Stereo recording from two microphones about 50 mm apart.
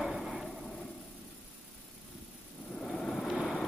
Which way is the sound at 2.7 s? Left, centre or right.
Centre.